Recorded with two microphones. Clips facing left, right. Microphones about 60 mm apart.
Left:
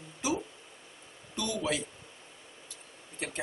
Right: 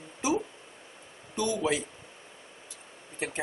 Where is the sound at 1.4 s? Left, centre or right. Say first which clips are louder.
Right 4 dB; right.